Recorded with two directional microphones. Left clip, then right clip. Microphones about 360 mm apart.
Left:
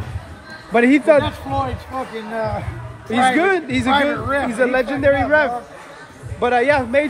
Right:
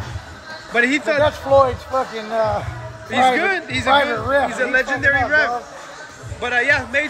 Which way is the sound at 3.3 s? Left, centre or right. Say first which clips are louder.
Left 2 dB; centre.